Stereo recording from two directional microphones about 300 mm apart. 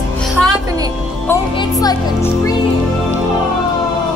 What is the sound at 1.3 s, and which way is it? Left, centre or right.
Speech, centre.